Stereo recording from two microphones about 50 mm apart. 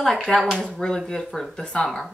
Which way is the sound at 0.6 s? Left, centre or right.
Centre.